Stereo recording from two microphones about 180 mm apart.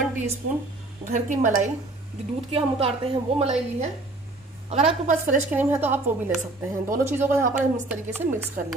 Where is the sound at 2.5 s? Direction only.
30° right (ahead or behind).